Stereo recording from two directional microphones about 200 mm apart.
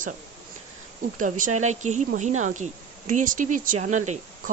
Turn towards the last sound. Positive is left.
turn(degrees=-35)  # may be behind; listen again after turning